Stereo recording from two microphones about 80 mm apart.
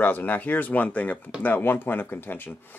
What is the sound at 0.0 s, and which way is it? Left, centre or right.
Speech, left.